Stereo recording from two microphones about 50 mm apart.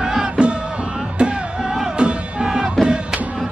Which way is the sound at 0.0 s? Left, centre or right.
Centre.